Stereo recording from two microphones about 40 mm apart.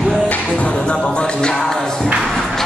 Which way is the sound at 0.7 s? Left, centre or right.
Left.